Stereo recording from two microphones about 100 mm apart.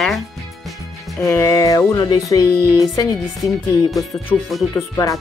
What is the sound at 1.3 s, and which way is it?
Speech, 35° left (ahead or behind).